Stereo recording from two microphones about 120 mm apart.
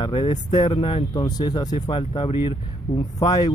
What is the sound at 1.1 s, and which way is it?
Speech, 35° left (ahead or behind).